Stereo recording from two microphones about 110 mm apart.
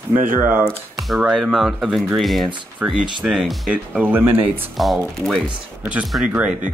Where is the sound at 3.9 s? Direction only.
15° right (ahead or behind).